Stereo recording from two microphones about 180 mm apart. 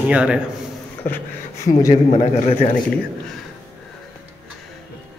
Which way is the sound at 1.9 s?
40° left (ahead or behind).